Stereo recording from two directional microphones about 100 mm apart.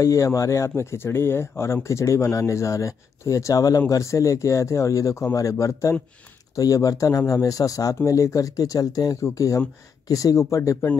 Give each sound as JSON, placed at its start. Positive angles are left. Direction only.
{"t": 0.0, "sound": "speech", "side_deg": 30}